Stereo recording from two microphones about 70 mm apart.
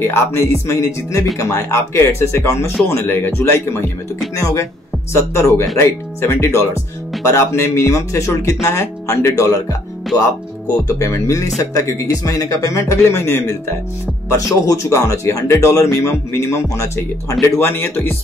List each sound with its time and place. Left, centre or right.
0.0 s speech: left
4.4 s speech: left
10.9 s speech: left
14.7 s speech: left
17.6 s speech: left